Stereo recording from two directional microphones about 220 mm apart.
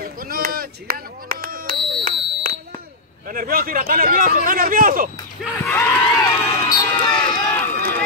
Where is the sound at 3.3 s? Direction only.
40° right (ahead or behind).